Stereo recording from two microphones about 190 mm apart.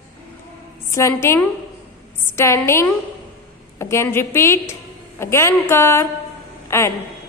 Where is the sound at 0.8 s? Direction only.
15° left (ahead or behind).